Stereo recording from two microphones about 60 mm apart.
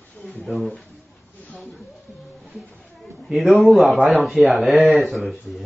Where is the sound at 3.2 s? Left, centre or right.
Centre.